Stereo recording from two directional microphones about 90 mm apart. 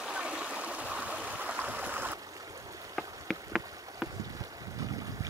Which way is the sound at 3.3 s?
Centre (ahead or behind).